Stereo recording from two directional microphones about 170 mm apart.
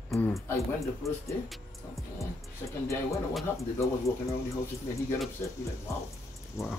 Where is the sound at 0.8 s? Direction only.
15° left (ahead or behind).